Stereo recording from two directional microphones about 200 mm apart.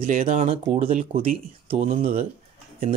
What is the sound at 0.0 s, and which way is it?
Speech, 45° right (ahead or behind).